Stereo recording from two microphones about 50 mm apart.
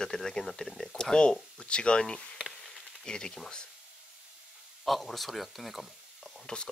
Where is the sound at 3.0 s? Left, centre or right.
Centre.